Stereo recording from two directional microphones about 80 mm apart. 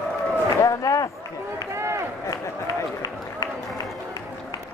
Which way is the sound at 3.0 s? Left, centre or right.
Left.